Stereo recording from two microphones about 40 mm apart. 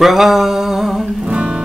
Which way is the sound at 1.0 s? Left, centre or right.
Right.